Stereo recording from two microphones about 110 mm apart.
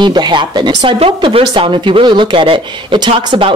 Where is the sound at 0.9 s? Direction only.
60° right (ahead or behind).